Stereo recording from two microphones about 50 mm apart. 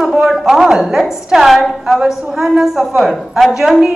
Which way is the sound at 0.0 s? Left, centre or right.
Centre.